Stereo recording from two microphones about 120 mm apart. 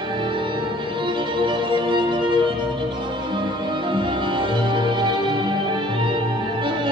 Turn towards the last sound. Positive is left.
turn(degrees=-40)  # may be behind; listen again after turning